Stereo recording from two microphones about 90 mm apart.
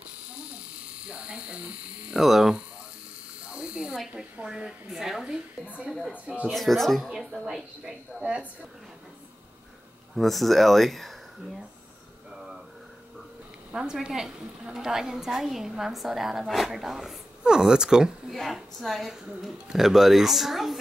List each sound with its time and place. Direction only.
1.0 s speech: 10° right (ahead or behind)
2.2 s a woman's voice: centre (ahead or behind)
3.4 s electric shaver: 10° right (ahead or behind)
4.1 s a woman's voice: 10° right (ahead or behind)
6.5 s a woman's voice: centre (ahead or behind)
7.4 s speech: 10° right (ahead or behind)
10.1 s a woman's voice: centre (ahead or behind)
13.7 s a woman's voice: 10° right (ahead or behind)